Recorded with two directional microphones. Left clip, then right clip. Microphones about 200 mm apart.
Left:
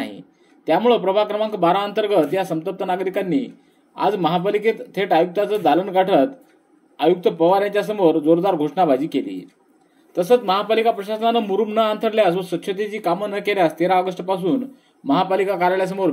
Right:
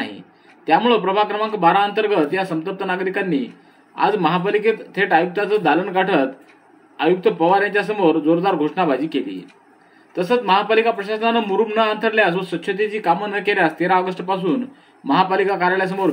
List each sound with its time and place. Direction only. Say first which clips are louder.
0.7 s speech: right 1 dB; 40° left (ahead or behind)